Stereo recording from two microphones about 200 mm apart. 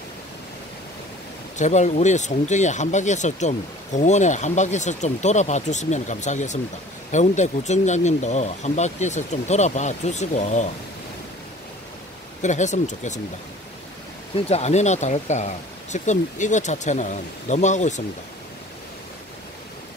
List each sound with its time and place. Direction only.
1.6 s speech: 35° left (ahead or behind)
12.4 s speech: 35° left (ahead or behind)
14.3 s speech: 30° left (ahead or behind)